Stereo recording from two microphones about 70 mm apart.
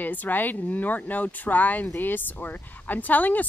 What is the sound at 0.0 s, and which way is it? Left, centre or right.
Speech, left.